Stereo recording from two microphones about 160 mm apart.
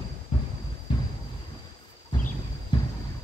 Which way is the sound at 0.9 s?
30° left (ahead or behind).